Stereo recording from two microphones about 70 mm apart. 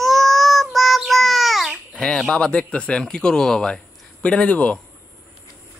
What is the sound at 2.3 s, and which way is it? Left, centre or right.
Speech, centre.